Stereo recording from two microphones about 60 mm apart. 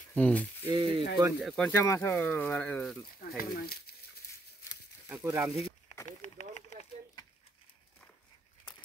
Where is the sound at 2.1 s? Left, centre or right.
Left.